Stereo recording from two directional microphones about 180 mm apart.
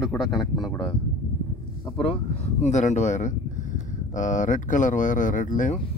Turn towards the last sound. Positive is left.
turn(degrees=45)  # may be behind; listen again after turning